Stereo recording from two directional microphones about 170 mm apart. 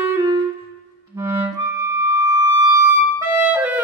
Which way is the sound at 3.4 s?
10° right (ahead or behind).